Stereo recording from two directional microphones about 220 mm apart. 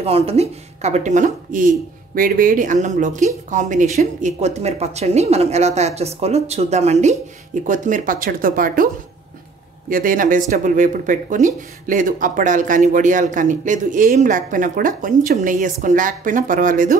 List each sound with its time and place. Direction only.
0.0 s speech: 25° right (ahead or behind)
9.8 s speech: 40° right (ahead or behind)